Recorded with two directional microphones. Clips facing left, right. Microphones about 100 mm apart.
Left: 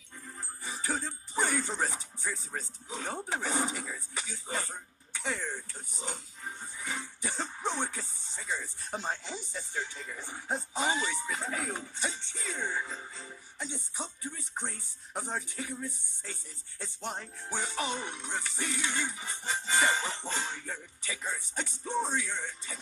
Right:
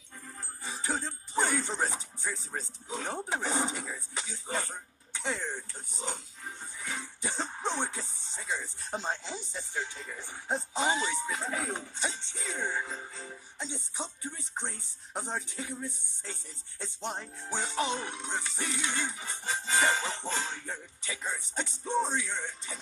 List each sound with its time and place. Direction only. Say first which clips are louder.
0.8 s speech: right 1 dB; centre (ahead or behind)
5.3 s speech: right 1 dB; 20° right (ahead or behind)
7.6 s music: even; 5° left (ahead or behind)
8.0 s speech: right 1 dB; centre (ahead or behind)
13.2 s music: right 1 dB; 5° left (ahead or behind)
14.6 s speech: even; 5° left (ahead or behind)
19.0 s music: even; centre (ahead or behind)
20.6 s speech: even; 15° right (ahead or behind)
21.1 s speech: right 1 dB; centre (ahead or behind)